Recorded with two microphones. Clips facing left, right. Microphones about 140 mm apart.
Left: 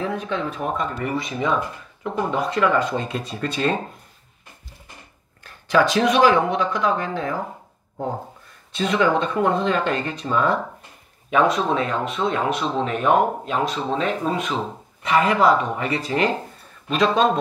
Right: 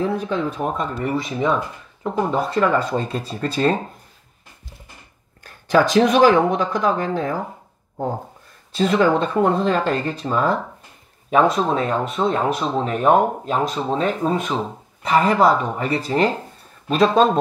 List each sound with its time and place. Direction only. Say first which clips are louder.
0.0 s speech: right 3 dB; 35° right (ahead or behind)
5.4 s speech: right 2 dB; 40° right (ahead or behind)
8.7 s speech: right 3 dB; 35° right (ahead or behind)
11.5 s speech: right 2 dB; 35° right (ahead or behind)